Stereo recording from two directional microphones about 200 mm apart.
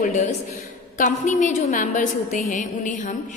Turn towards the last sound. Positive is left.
turn(degrees=40)  # may be behind; listen again after turning